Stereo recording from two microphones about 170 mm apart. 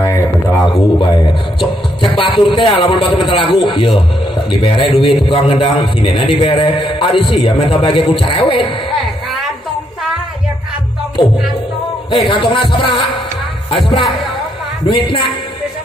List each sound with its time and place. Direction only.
0.0 s a sound: 20° left (ahead or behind)
2.1 s a man's voice: 30° left (ahead or behind)
12.3 s a man's voice: 30° left (ahead or behind)